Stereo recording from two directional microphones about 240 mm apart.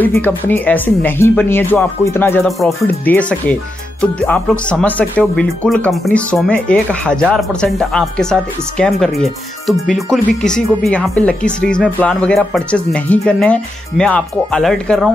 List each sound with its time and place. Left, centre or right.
0.0 s speech: centre